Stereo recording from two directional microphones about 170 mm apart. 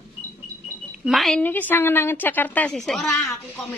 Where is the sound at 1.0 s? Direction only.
Centre (ahead or behind).